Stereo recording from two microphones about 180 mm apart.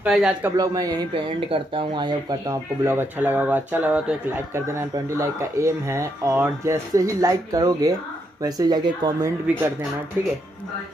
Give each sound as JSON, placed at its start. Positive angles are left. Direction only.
{"t": 0.0, "sound": "speech", "side_deg": -5}
{"t": 0.6, "sound": "speech", "side_deg": -20}
{"t": 2.4, "sound": "speech", "side_deg": -15}